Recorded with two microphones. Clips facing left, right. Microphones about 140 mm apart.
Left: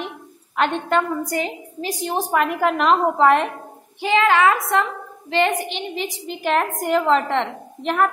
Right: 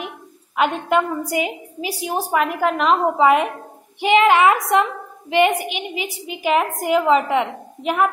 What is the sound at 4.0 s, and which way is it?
A woman's voice, 20° right (ahead or behind).